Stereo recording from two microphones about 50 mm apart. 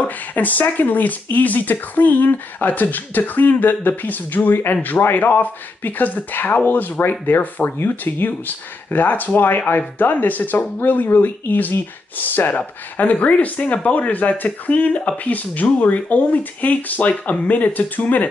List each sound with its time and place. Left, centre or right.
0.0 s speech: left